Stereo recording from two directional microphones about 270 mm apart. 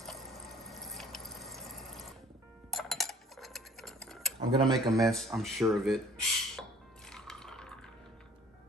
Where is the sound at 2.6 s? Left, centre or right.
Centre.